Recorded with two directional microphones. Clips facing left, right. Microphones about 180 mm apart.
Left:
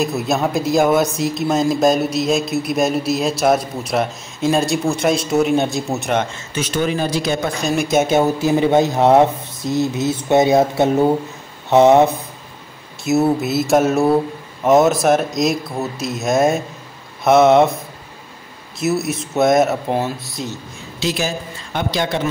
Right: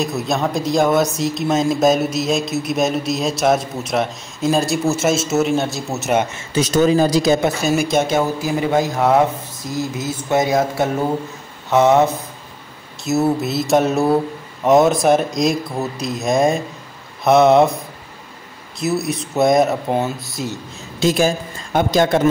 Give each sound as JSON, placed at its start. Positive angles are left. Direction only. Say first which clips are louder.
{"t": 0.0, "sound": "speech", "louder": "left 1 dB", "side_deg": 0}
{"t": 6.5, "sound": "speech", "louder": "right 6 dB", "side_deg": -40}
{"t": 7.6, "sound": "speech", "louder": "even", "side_deg": 0}
{"t": 8.1, "sound": "speech", "louder": "left 3 dB", "side_deg": 20}
{"t": 13.0, "sound": "speech", "louder": "left 1 dB", "side_deg": 0}
{"t": 21.0, "sound": "a woman's voice", "louder": "right 5 dB", "side_deg": -50}